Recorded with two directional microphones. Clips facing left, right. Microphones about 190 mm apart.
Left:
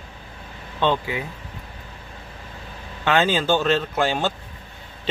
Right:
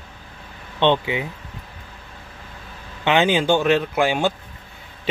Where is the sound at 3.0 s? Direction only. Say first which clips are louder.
Right 2 dB; 15° right (ahead or behind).